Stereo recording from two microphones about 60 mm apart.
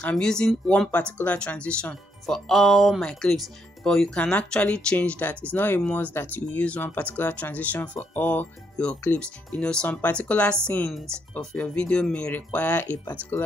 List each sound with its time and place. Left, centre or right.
0.1 s speech: centre
2.2 s speech: centre; by 13.5 s left